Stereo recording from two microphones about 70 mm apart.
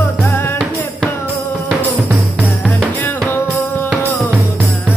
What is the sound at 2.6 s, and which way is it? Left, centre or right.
Music, left.